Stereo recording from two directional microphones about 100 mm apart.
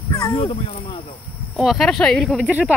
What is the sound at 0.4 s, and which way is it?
Speech, 75° left (ahead or behind).